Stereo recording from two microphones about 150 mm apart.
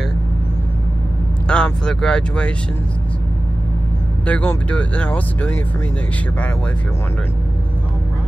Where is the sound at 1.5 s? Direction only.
5° left (ahead or behind).